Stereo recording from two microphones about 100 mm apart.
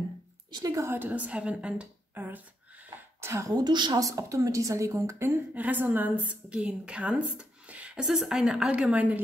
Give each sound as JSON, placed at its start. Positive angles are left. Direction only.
{"t": 0.5, "sound": "a woman's voice", "side_deg": -50}
{"t": 0.7, "sound": "a woman's voice", "side_deg": -25}
{"t": 3.2, "sound": "a woman's voice", "side_deg": -30}
{"t": 3.5, "sound": "a woman's voice", "side_deg": -45}
{"t": 4.0, "sound": "a woman's voice", "side_deg": -35}
{"t": 5.5, "sound": "a woman's voice", "side_deg": -15}